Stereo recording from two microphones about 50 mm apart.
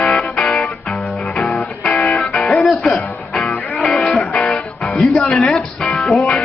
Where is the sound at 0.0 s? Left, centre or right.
Centre.